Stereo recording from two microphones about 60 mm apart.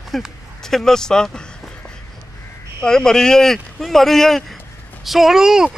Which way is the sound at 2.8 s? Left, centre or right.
Centre.